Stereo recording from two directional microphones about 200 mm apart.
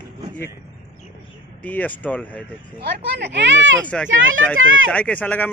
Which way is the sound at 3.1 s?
60° right (ahead or behind).